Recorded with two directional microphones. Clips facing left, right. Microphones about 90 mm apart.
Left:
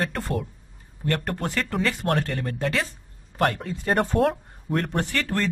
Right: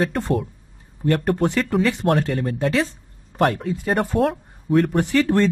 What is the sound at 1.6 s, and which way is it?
Speech, 5° right (ahead or behind).